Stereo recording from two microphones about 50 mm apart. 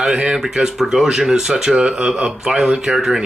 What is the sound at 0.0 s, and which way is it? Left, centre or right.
Speech, centre.